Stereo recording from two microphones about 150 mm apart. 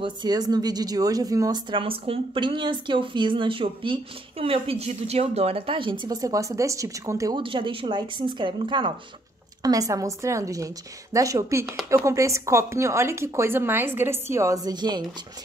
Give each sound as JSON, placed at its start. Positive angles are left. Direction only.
{"t": 0.0, "sound": "speech", "side_deg": -25}
{"t": 1.7, "sound": "speech", "side_deg": -35}
{"t": 7.3, "sound": "speech", "side_deg": -35}
{"t": 9.6, "sound": "a woman's voice", "side_deg": -25}